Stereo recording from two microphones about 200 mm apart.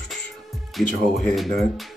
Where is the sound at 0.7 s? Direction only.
Centre (ahead or behind).